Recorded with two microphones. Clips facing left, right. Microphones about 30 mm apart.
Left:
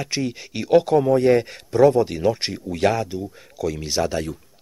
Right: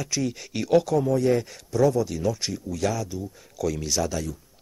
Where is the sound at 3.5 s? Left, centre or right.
Left.